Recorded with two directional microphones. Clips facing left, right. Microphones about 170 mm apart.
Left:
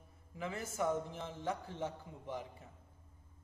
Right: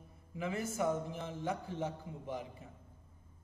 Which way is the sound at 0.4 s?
15° right (ahead or behind).